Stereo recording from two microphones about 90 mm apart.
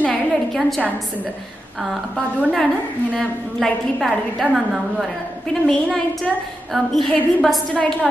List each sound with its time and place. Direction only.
0.0 s a sound: 10° left (ahead or behind)
0.6 s a woman's voice: centre (ahead or behind)
2.5 s a woman's voice: 5° left (ahead or behind)